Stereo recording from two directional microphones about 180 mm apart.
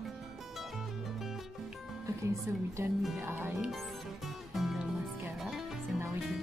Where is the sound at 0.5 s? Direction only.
Centre (ahead or behind).